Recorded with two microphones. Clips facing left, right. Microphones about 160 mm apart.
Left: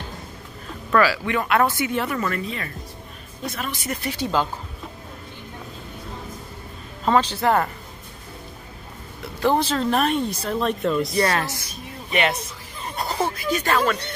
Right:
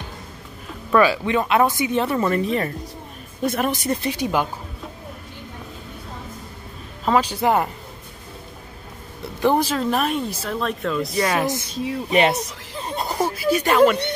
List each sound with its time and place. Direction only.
0.9 s speech: 20° right (ahead or behind)
3.4 s speech: 50° right (ahead or behind)
4.0 s speech: 15° right (ahead or behind)
7.1 s speech: 10° right (ahead or behind)
9.4 s speech: 15° right (ahead or behind)
12.1 s speech: 40° right (ahead or behind)
12.9 s speech: 15° right (ahead or behind)